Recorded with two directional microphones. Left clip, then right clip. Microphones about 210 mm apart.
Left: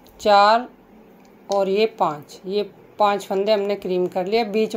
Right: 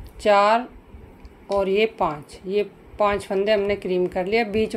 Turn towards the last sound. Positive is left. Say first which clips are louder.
# left 1 dB
turn(degrees=0)  # may be behind; listen again after turning